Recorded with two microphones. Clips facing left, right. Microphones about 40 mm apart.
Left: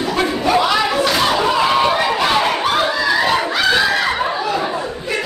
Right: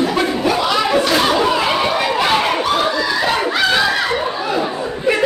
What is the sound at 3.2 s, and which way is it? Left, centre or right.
Screaming, centre.